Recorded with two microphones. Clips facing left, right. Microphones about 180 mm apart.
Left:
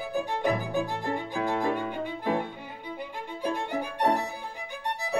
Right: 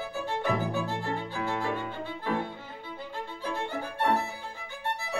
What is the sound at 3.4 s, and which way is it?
Violin, 15° left (ahead or behind).